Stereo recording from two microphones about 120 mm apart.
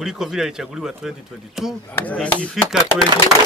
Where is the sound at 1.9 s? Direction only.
10° left (ahead or behind).